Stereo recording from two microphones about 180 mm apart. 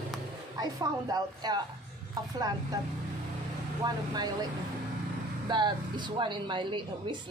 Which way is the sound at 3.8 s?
25° right (ahead or behind).